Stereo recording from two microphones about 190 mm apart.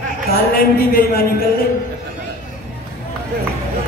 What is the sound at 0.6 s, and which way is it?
Speech, 50° left (ahead or behind).